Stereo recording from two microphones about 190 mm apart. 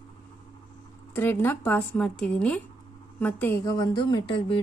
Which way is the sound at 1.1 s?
10° left (ahead or behind).